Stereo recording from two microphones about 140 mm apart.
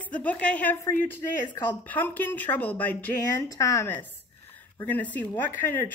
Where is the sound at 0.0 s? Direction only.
10° left (ahead or behind).